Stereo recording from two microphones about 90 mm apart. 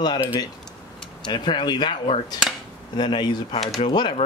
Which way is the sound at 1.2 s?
60° left (ahead or behind).